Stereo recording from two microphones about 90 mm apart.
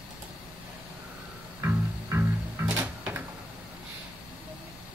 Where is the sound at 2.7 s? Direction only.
15° right (ahead or behind).